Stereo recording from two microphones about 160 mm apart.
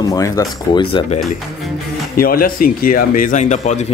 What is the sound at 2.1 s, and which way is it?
Speech, 65° left (ahead or behind).